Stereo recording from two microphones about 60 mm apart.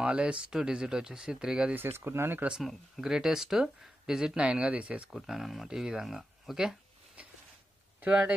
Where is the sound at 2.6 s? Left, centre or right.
Centre; by 5.1 s right.